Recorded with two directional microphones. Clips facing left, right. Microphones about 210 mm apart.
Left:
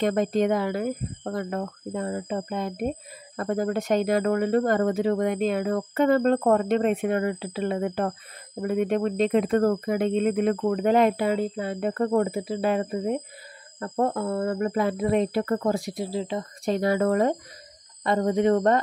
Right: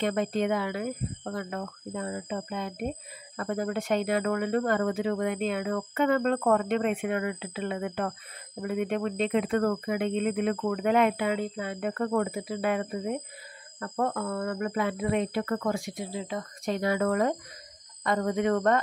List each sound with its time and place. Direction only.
0.0 s speech: 40° left (ahead or behind)